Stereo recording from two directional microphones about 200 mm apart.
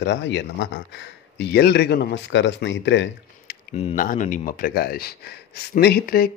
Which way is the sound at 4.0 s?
40° left (ahead or behind).